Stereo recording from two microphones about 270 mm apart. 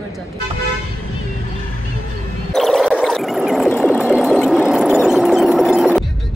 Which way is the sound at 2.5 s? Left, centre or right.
Centre.